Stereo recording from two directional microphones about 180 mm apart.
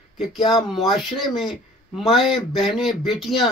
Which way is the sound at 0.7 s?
Centre (ahead or behind).